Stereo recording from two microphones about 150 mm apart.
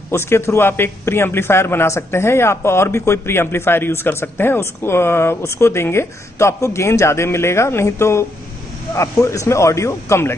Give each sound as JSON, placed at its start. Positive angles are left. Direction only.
{"t": 0.1, "sound": "a man's voice", "side_deg": 15}